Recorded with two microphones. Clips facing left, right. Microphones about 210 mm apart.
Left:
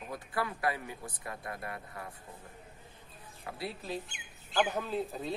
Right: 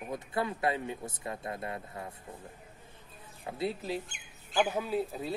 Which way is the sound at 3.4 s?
20° right (ahead or behind).